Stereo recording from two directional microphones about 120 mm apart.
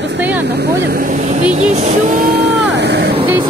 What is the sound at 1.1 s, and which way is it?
Speech, 80° right.